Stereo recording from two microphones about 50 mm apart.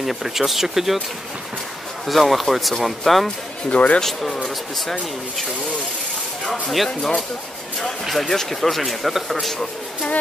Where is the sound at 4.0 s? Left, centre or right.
Centre.